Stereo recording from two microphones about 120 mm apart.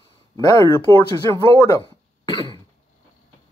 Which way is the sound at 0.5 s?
20° left (ahead or behind).